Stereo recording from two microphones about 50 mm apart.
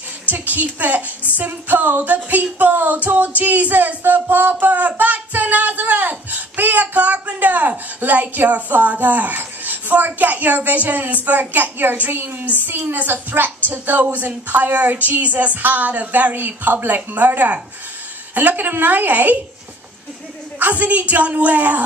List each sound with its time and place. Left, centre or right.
0.3 s speech: right
4.6 s speech: right
20.5 s speech: right